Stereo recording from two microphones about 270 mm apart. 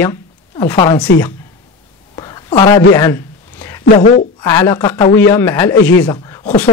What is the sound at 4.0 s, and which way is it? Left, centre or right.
Speech, left.